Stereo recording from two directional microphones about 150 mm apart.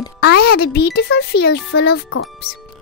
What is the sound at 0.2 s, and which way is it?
A child's voice, 90° left.